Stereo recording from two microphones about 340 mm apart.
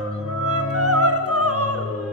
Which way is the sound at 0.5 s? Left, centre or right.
Right.